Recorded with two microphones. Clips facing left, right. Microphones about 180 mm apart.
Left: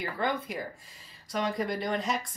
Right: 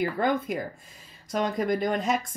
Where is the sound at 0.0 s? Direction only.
50° right (ahead or behind).